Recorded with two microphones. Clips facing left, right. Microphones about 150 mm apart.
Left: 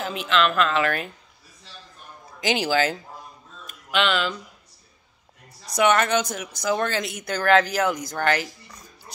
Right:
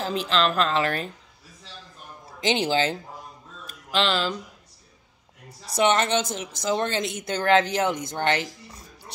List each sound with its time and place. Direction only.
0.0 s speech: 35° right (ahead or behind)
2.4 s speech: 25° right (ahead or behind)
3.6 s a sound: 30° right (ahead or behind)
5.7 s speech: 25° right (ahead or behind)